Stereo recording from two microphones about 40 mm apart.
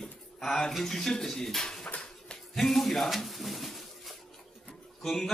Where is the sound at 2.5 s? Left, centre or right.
Centre.